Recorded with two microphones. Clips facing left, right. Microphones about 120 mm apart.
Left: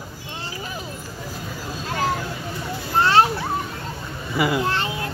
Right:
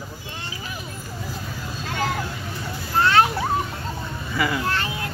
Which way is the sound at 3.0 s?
30° left (ahead or behind).